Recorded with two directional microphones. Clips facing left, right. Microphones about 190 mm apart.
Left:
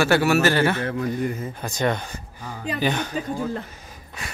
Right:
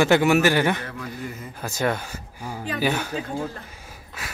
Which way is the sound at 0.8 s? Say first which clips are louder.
Left 9 dB; 55° left (ahead or behind).